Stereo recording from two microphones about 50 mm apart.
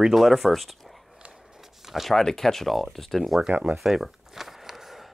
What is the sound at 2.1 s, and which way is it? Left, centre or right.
Speech, centre.